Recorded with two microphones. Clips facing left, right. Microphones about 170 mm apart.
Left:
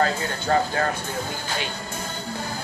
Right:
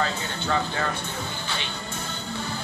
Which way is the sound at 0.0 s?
45° left (ahead or behind).